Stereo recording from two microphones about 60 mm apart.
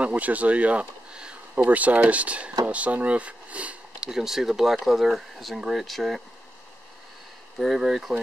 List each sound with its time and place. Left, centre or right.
0.0 s speech: right
2.6 s a sound: right
4.1 s speech: centre
7.5 s speech: centre